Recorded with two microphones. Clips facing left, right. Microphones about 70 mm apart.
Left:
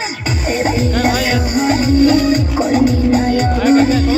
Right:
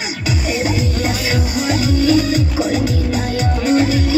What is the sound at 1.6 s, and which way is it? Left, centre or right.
Music, left.